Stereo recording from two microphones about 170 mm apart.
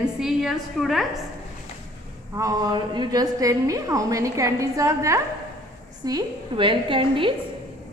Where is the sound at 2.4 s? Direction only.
20° right (ahead or behind).